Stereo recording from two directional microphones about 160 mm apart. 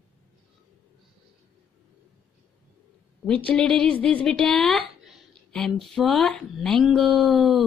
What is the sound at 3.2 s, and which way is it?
A woman's voice, 5° left (ahead or behind).